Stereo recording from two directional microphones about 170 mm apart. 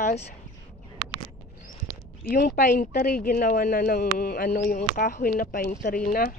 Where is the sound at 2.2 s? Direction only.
60° left (ahead or behind).